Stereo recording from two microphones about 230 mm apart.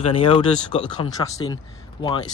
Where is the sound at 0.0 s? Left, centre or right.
Left.